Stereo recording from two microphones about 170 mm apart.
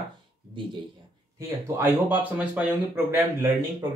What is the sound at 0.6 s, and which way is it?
Speech, 30° right (ahead or behind).